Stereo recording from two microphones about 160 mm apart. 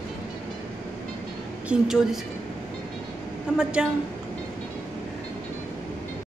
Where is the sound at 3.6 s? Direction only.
5° right (ahead or behind).